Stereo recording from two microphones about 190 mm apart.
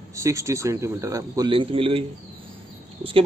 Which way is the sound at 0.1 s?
15° right (ahead or behind).